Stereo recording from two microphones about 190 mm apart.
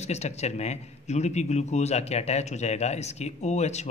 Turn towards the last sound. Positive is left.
turn(degrees=35)  # may be behind; listen again after turning